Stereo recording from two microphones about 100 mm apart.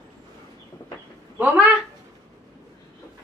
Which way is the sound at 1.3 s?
15° right (ahead or behind).